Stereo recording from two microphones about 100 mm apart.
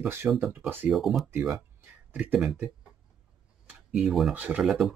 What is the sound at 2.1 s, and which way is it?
Speech, 10° right (ahead or behind).